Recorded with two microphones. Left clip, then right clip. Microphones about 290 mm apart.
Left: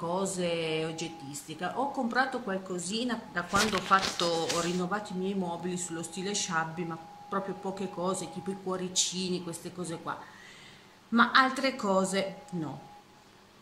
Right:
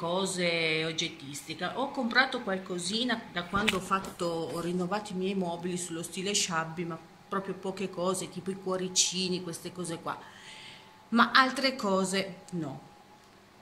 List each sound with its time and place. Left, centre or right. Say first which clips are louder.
0.0 s speech: right 2 dB; centre
11.1 s speech: even; centre